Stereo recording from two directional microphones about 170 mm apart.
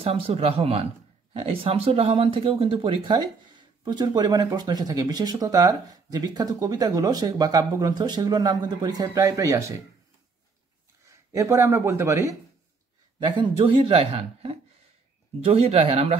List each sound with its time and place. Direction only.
0.0 s a woman's voice: 35° right (ahead or behind); by 9.8 s 20° right (ahead or behind)
11.3 s speech: 15° right (ahead or behind)
13.4 s a woman's voice: 30° right (ahead or behind)